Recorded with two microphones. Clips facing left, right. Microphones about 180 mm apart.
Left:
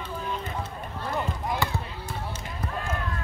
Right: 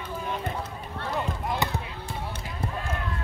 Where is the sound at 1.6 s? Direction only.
20° right (ahead or behind).